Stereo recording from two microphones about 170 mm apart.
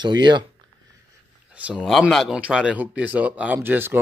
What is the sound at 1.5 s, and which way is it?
Speech, 10° right (ahead or behind).